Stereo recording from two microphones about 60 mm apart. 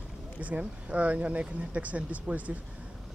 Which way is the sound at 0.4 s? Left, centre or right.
Right.